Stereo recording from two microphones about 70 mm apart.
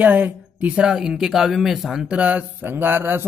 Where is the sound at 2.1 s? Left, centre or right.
Right.